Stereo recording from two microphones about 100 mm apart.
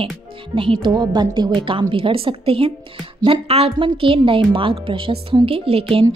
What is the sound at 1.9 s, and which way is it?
Speech, 65° right (ahead or behind).